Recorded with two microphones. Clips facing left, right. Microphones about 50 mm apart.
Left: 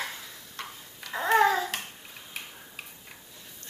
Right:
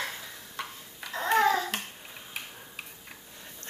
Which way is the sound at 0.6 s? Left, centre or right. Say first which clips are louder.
Right 2 dB; centre.